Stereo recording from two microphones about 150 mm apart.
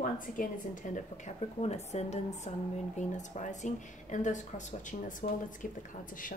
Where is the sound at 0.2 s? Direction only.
60° left (ahead or behind).